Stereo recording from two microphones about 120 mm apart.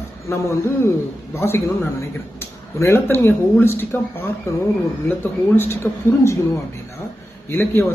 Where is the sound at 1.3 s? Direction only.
20° left (ahead or behind).